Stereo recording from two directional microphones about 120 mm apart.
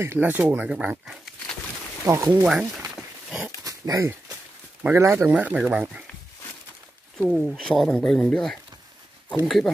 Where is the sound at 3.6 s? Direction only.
30° right (ahead or behind).